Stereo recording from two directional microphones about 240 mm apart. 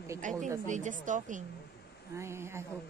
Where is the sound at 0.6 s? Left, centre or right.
Right.